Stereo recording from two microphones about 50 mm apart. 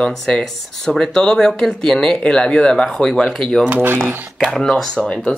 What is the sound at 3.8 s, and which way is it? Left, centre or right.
Speech, right.